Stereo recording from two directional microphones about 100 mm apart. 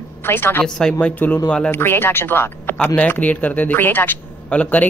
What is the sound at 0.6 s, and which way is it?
Speech, 5° left (ahead or behind).